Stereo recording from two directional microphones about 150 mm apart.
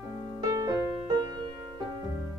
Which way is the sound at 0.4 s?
20° right (ahead or behind).